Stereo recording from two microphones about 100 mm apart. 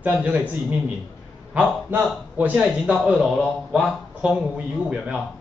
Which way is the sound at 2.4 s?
15° right (ahead or behind).